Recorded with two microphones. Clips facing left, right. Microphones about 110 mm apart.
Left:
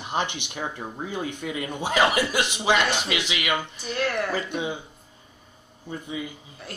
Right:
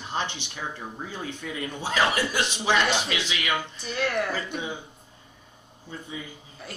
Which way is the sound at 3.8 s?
Centre (ahead or behind).